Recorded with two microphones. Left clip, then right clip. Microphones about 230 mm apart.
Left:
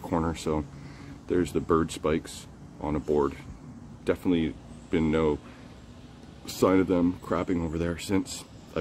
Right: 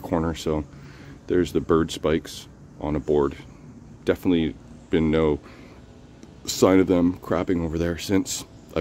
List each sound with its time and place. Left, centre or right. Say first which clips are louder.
0.0 s a sound: right 4 dB; centre
1.2 s speech: right 5 dB; centre
6.4 s speech: right 5 dB; right